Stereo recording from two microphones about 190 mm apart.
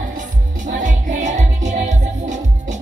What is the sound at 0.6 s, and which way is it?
Music, 40° right (ahead or behind).